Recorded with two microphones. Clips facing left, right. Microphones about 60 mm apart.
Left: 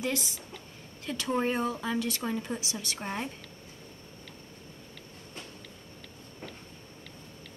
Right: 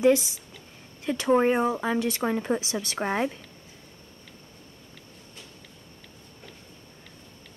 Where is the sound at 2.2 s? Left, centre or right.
Right.